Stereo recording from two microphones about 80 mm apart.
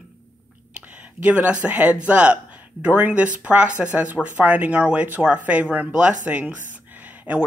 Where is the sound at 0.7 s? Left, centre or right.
Centre.